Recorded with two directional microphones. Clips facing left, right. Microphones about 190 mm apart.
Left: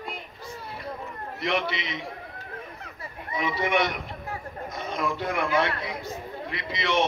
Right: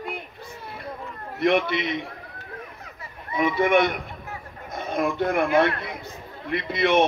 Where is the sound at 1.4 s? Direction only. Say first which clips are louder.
Right 7 dB; 55° right (ahead or behind).